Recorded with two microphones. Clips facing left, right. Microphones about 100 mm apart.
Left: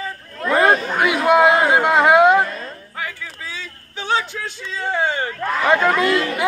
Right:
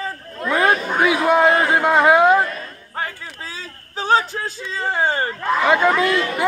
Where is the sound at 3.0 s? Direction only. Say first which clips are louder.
Right 2 dB; 35° right (ahead or behind).